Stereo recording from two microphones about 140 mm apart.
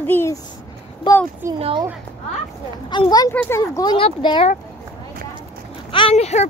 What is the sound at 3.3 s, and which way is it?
Speech, 15° left (ahead or behind).